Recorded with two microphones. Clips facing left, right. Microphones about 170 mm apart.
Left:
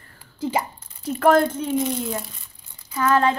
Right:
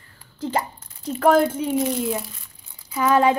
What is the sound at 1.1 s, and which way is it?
A woman's voice, centre (ahead or behind).